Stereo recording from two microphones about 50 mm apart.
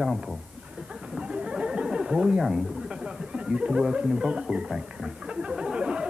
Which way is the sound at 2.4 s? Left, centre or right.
Centre.